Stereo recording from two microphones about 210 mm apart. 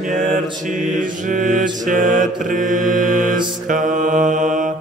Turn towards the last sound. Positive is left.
turn(degrees=-40)  # may be behind; listen again after turning